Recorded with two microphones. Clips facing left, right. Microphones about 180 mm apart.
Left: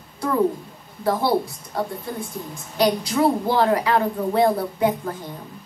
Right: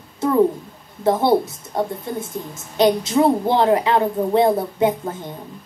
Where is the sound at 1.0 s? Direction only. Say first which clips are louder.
Right 4 dB; 20° right (ahead or behind).